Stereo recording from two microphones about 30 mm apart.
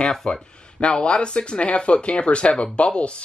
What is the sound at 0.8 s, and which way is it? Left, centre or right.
Speech, left.